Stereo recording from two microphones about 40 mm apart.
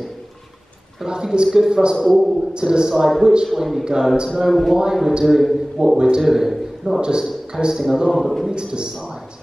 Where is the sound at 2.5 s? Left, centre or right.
Centre.